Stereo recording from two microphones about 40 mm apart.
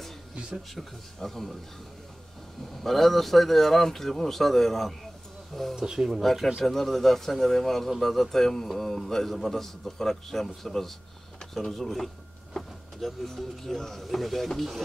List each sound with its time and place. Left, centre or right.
0.7 s speech: centre
2.7 s speech: centre
5.8 s speech: centre
6.2 s speech: centre
12.6 s vehicle: centre
13.0 s speech: centre